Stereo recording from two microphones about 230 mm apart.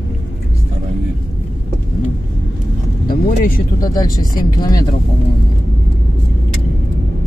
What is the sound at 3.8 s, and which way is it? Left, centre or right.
Speech, centre.